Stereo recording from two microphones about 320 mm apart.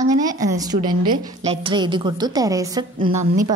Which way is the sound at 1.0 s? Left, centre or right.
Right.